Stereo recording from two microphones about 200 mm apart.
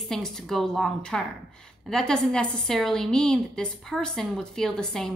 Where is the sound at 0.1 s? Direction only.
Centre (ahead or behind).